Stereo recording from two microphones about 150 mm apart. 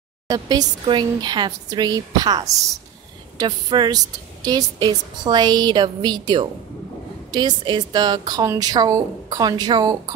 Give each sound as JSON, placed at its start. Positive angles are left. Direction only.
{"t": 0.3, "sound": "a woman's voice", "side_deg": -25}